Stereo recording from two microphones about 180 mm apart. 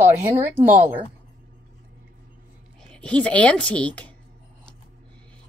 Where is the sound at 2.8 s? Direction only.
5° left (ahead or behind).